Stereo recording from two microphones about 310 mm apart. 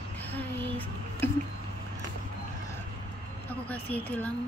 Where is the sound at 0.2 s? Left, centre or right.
Centre.